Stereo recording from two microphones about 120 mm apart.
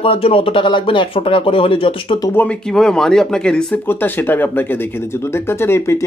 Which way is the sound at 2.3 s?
15° left (ahead or behind).